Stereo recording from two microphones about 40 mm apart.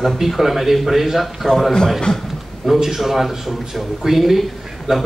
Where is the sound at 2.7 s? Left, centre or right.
Centre.